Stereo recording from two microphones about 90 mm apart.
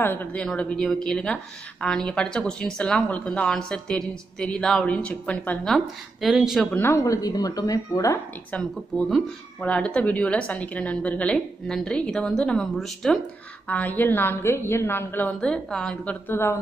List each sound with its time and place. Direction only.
0.0 s a woman's voice: 20° left (ahead or behind)
6.2 s speech: 5° right (ahead or behind)
6.8 s a woman's voice: 25° left (ahead or behind)
7.1 s speech: 40° left (ahead or behind)
8.5 s a woman's voice: 10° left (ahead or behind)
13.7 s a woman's voice: 20° left (ahead or behind)
15.4 s a woman's voice: 5° left (ahead or behind)
16.3 s a woman's voice: 25° left (ahead or behind)